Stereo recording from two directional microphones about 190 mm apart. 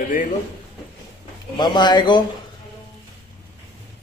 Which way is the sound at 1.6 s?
25° left (ahead or behind).